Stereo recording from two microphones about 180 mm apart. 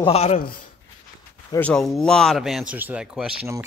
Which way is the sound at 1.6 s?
5° left (ahead or behind).